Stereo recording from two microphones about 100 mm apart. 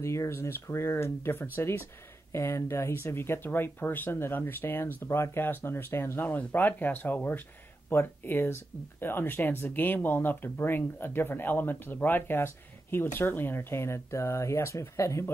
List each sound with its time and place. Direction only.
0.0 s speech: 30° left (ahead or behind)